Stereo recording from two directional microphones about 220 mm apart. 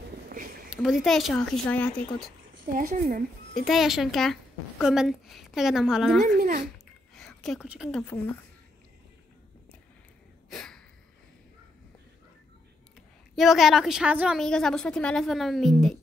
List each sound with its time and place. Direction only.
0.7 s speech: centre (ahead or behind)
2.7 s speech: 40° right (ahead or behind)
3.6 s speech: centre (ahead or behind)
6.2 s speech: 40° right (ahead or behind)
7.2 s a woman's voice: centre (ahead or behind)
10.5 s a sound: centre (ahead or behind)
13.4 s speech: centre (ahead or behind)